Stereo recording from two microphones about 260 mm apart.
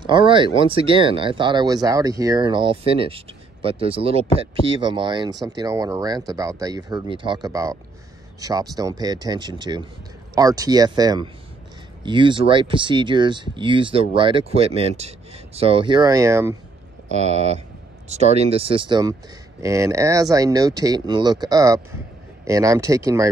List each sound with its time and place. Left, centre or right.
0.0 s speech: centre
17.1 s speech: right